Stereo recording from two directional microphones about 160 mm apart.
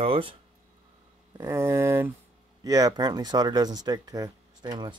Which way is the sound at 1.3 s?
15° right (ahead or behind).